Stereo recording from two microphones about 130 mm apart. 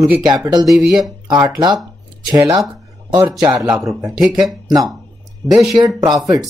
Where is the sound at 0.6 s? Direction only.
Centre (ahead or behind).